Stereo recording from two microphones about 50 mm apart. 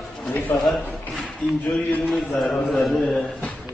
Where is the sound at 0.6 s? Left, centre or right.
Centre.